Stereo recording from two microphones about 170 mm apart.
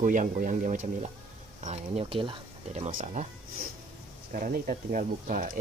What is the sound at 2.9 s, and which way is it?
Speech, 50° right (ahead or behind).